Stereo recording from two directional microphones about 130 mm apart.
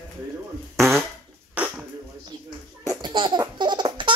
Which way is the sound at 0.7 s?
Centre (ahead or behind).